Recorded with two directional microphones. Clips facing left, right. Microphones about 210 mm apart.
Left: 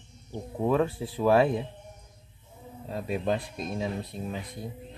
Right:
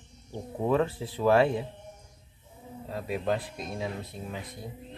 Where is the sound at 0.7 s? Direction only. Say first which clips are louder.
Left 1 dB; 10° left (ahead or behind).